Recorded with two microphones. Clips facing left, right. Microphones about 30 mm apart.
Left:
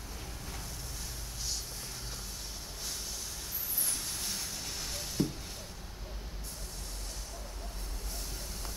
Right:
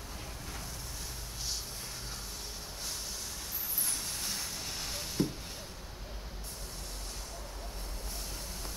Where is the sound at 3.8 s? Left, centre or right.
Centre.